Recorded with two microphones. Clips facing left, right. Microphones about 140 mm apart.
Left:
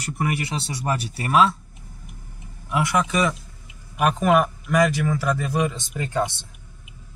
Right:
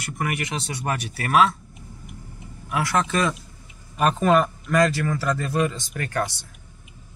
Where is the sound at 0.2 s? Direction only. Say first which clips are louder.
Left 2 dB; 30° left (ahead or behind).